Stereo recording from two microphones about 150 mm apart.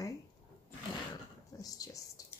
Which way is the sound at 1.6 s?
25° left (ahead or behind).